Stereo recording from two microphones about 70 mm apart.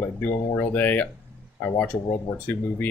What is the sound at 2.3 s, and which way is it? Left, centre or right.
Speech, left.